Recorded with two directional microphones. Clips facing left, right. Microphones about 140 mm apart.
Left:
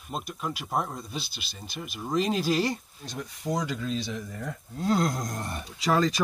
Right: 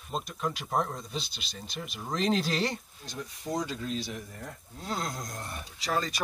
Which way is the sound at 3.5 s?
90° left.